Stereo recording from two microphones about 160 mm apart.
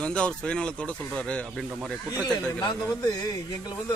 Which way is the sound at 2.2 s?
25° left (ahead or behind).